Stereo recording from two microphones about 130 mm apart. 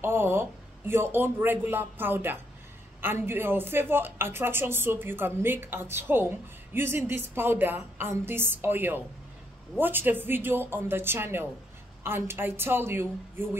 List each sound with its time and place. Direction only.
0.0 s speech: 15° right (ahead or behind)